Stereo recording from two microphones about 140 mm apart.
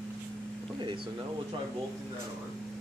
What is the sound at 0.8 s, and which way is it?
Speech, 35° right (ahead or behind).